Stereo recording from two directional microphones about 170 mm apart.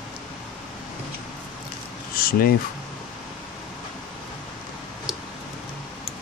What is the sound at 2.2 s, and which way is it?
Speech, 60° left (ahead or behind).